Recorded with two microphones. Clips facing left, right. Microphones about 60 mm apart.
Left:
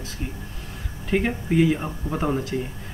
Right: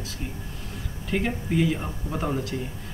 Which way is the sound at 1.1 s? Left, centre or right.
Centre.